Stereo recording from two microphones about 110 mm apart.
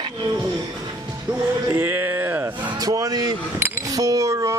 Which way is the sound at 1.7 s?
20° right (ahead or behind).